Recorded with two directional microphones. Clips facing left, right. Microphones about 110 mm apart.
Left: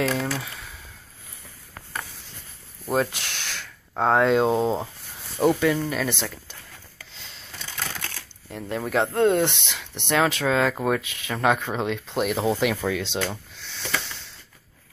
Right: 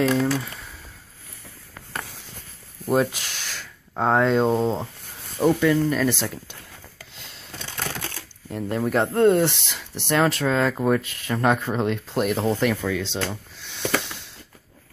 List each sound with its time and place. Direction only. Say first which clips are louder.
2.9 s speech: right 3 dB; 5° right (ahead or behind)
7.6 s typing: right 3 dB; 25° right (ahead or behind)
8.5 s speech: right 4 dB; centre (ahead or behind); by 13.2 s 15° left (ahead or behind)